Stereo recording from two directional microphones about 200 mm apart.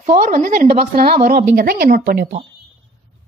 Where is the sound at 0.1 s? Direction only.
45° right (ahead or behind).